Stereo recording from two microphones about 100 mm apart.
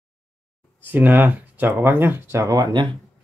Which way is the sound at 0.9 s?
20° right (ahead or behind).